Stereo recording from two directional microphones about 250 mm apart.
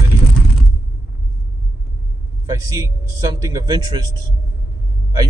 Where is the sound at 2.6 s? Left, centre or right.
Centre.